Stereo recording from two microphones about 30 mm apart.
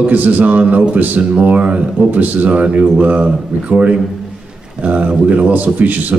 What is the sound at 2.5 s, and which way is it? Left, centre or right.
Speech, right.